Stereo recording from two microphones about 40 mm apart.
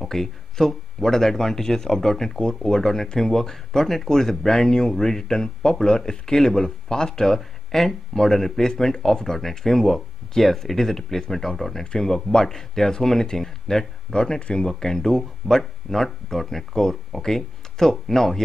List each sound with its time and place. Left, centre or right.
0.0 s speech: centre